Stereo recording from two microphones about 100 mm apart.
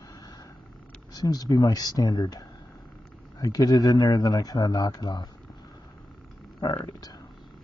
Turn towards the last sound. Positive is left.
turn(degrees=45)  # may be behind; listen again after turning